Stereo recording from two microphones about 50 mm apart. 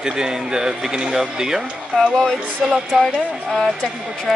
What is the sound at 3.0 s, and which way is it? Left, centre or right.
Speech, centre.